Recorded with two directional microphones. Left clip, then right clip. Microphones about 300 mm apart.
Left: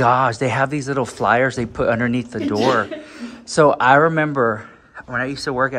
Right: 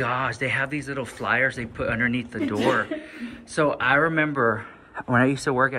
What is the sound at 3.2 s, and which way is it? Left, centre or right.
Speech, centre.